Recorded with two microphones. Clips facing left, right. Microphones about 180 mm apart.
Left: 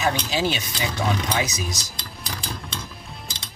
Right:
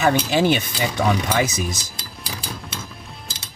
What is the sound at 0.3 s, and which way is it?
Speech, 55° right (ahead or behind).